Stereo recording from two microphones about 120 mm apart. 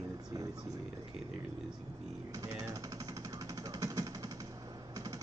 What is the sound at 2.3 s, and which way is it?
Jackhammer, 30° right (ahead or behind).